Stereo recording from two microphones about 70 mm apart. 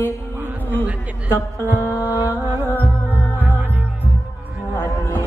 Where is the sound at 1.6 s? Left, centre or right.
Left.